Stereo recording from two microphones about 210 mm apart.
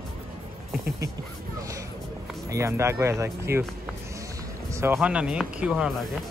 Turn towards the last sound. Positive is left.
turn(degrees=0)  # may be behind; listen again after turning